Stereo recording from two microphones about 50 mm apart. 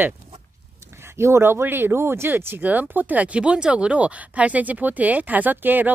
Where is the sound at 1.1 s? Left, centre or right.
Right.